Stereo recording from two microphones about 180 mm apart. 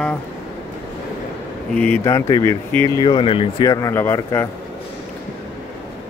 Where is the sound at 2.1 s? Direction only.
20° left (ahead or behind).